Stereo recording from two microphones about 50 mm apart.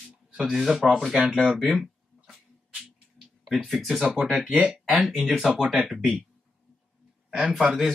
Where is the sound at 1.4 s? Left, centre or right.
Centre.